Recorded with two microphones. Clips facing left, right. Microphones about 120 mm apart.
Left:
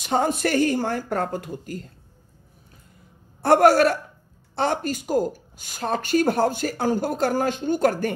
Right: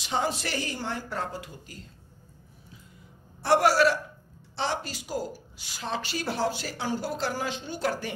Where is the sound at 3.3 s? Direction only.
50° left (ahead or behind).